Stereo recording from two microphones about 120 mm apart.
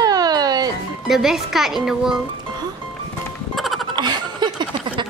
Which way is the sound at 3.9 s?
40° right (ahead or behind).